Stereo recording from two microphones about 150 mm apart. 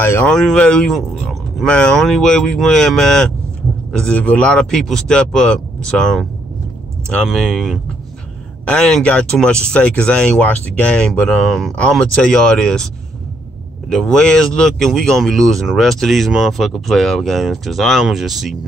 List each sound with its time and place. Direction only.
0.0 s speech: 15° left (ahead or behind)
0.3 s speech: 5° left (ahead or behind)
7.2 s speech: centre (ahead or behind)